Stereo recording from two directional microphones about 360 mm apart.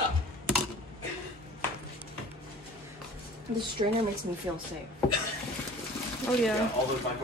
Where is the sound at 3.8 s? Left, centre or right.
Centre.